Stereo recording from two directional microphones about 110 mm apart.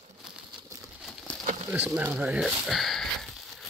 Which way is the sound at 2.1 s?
10° right (ahead or behind).